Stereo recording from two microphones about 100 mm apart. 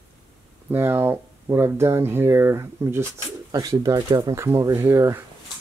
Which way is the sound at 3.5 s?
35° right (ahead or behind).